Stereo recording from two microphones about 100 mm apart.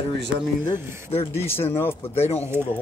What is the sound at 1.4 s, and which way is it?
Speech, 25° left (ahead or behind).